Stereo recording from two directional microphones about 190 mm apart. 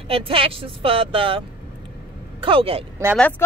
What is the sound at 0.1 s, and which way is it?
Speech, 30° right (ahead or behind).